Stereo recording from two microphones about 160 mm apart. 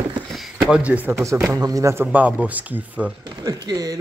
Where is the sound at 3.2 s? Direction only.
25° right (ahead or behind).